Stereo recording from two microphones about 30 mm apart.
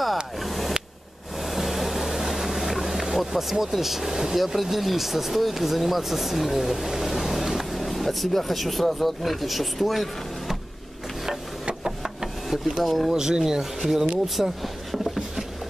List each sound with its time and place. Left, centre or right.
0.0 s a sound: centre
1.4 s boat: centre
3.7 s speech: centre
7.8 s speech: centre
11.6 s a sound: right
12.8 s speech: centre
13.1 s speech: right
14.2 s vehicle: centre